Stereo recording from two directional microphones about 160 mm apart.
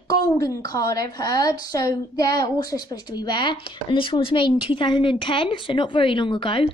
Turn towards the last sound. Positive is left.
turn(degrees=35)  # may be behind; listen again after turning